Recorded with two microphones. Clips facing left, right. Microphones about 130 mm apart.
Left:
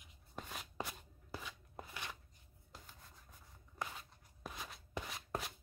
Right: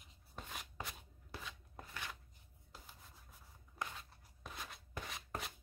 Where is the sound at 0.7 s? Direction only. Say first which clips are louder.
Left 4 dB; 5° left (ahead or behind).